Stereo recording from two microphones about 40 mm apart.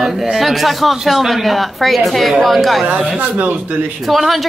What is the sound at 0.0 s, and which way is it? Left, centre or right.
Speech, centre.